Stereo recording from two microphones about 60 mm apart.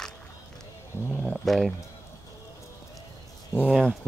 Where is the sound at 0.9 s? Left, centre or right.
Left.